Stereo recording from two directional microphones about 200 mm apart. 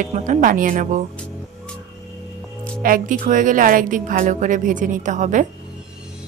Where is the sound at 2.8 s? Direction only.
40° right (ahead or behind).